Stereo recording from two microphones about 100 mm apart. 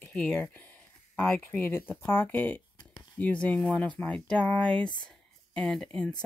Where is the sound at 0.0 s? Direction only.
15° left (ahead or behind).